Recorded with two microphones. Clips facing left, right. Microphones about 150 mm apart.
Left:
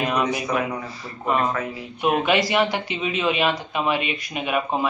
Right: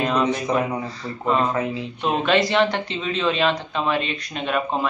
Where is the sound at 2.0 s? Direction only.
10° left (ahead or behind).